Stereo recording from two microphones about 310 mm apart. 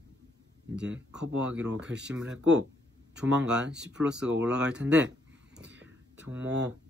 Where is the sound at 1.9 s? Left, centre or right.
Right.